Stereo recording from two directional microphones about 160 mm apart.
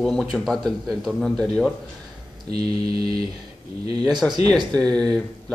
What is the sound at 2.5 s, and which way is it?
Mantra, 40° left (ahead or behind).